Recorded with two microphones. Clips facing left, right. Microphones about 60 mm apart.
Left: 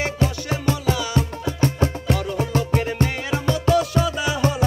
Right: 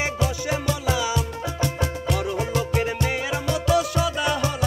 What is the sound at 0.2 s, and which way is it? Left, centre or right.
Music, left.